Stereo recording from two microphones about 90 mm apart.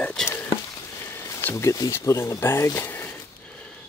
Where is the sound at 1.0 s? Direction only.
25° left (ahead or behind).